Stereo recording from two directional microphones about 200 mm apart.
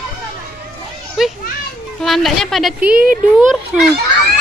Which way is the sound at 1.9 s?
Centre (ahead or behind).